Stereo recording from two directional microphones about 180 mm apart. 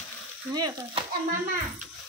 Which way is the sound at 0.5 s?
25° right (ahead or behind).